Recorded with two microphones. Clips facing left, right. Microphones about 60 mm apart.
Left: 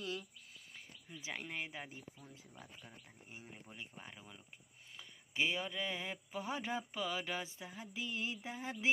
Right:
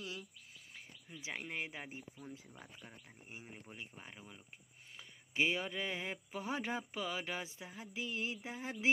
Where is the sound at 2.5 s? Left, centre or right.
Centre.